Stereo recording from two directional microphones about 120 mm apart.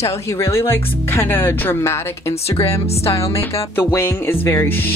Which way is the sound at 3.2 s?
25° left (ahead or behind).